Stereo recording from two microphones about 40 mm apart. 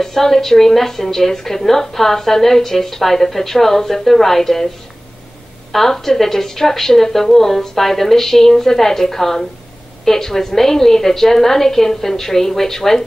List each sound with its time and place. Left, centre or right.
0.0 s a woman's voice: centre
5.7 s a woman's voice: centre